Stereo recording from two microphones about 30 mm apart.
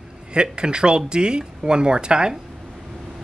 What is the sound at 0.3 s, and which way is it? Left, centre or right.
Speech, right.